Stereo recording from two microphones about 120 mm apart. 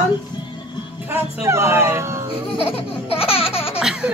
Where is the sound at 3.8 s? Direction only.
5° right (ahead or behind).